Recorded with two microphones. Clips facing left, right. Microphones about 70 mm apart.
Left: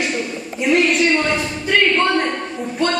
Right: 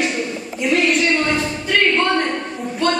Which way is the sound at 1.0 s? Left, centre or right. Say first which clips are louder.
Left 1 dB; centre.